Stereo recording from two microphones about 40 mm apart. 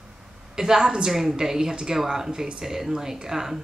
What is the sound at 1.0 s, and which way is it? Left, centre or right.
A woman's voice, centre.